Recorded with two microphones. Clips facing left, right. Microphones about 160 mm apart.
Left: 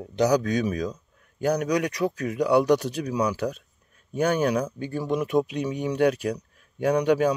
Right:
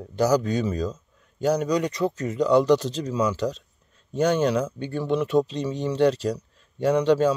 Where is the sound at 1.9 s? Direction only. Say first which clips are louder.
Right 1 dB; 10° left (ahead or behind).